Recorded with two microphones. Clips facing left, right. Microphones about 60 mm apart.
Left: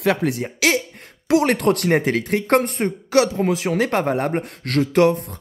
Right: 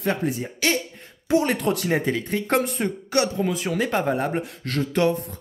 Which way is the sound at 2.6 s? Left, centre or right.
Left.